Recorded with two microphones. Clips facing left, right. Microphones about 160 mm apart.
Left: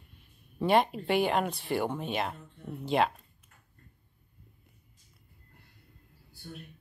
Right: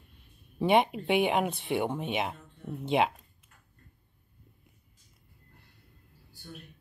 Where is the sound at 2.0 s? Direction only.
10° right (ahead or behind).